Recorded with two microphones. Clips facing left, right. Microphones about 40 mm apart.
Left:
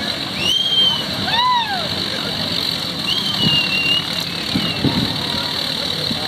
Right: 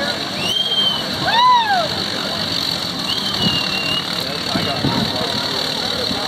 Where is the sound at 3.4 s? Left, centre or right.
Centre.